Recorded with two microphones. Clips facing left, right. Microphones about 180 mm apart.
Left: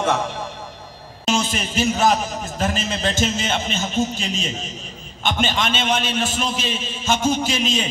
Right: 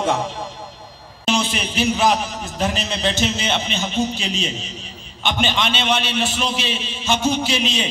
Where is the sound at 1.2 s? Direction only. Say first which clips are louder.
Right 1 dB; 45° left (ahead or behind).